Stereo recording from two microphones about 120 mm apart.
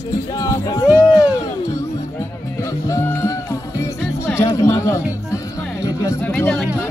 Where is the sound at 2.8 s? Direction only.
25° left (ahead or behind).